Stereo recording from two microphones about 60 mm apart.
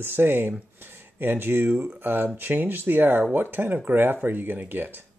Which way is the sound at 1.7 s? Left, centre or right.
Right.